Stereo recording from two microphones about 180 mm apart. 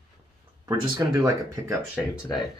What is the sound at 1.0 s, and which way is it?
Speech, 20° right (ahead or behind).